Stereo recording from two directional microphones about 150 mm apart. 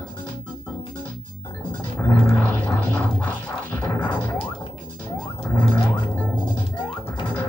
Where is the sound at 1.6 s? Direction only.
15° left (ahead or behind).